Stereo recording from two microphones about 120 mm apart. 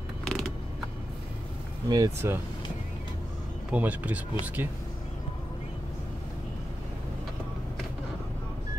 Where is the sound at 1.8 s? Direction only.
30° right (ahead or behind).